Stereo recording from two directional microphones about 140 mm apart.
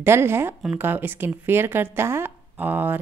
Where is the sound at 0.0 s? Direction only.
15° right (ahead or behind).